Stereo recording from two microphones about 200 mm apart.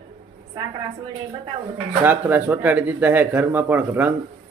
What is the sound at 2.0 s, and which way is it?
A man's voice, 10° right (ahead or behind).